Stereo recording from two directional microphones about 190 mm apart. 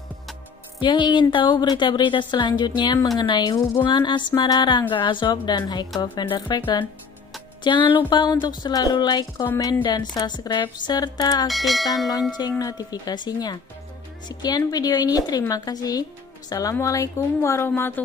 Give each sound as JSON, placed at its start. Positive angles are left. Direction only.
{"t": 0.7, "sound": "a woman's voice", "side_deg": 25}
{"t": 11.4, "sound": "speech", "side_deg": 0}
{"t": 12.1, "sound": "a woman's voice", "side_deg": 20}